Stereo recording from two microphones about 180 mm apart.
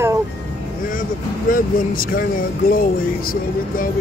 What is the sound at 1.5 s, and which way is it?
Speech, 50° left (ahead or behind).